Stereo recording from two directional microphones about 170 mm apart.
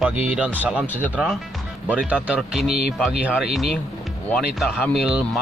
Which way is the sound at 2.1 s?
5° right (ahead or behind).